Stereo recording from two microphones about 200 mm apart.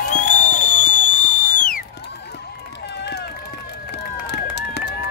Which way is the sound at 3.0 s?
55° left (ahead or behind).